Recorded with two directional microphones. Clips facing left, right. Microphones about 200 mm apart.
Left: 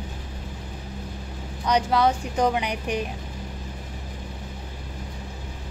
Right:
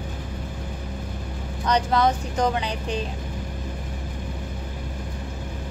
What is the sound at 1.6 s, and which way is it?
A woman's voice, 10° left (ahead or behind).